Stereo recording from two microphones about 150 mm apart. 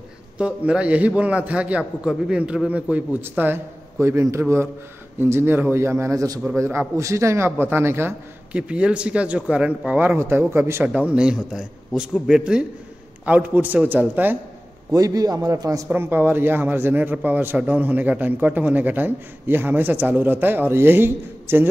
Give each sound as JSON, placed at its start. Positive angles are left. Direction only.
{"t": 0.4, "sound": "a man's voice", "side_deg": -5}
{"t": 14.9, "sound": "a man's voice", "side_deg": -25}